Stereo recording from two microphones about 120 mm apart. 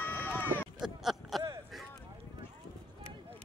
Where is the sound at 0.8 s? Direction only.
5° right (ahead or behind).